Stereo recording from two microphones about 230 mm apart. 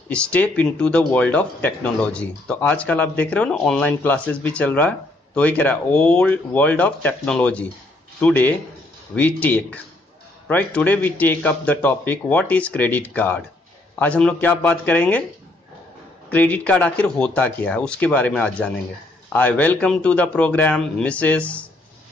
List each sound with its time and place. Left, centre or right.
0.1 s speech: centre
16.3 s speech: centre